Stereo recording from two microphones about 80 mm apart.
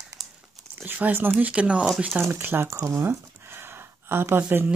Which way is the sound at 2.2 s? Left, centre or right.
Right.